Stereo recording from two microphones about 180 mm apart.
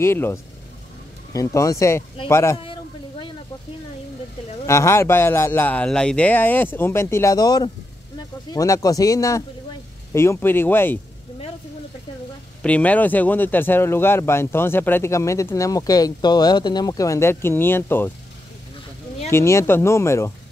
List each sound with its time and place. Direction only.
0.0 s speech: 15° left (ahead or behind)
2.6 s a sound: 25° left (ahead or behind)
4.6 s speech: 15° left (ahead or behind)
12.6 s speech: 10° left (ahead or behind)
19.3 s speech: 15° left (ahead or behind)